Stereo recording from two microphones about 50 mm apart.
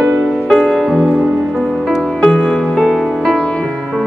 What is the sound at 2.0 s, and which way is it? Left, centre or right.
Music, centre.